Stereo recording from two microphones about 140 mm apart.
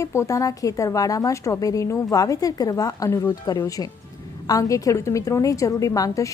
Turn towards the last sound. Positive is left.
turn(degrees=25)  # may be behind; listen again after turning